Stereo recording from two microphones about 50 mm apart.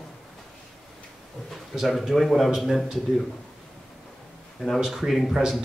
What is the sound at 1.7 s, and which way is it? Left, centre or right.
Speech, centre.